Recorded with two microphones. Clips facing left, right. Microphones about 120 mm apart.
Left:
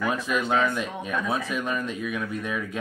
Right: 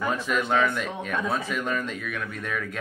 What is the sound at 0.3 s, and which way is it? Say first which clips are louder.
Speech: right 1 dB; 15° left (ahead or behind).